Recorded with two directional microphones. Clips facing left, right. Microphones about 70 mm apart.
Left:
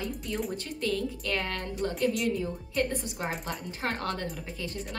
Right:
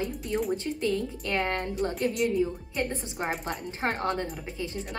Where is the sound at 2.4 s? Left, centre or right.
Centre.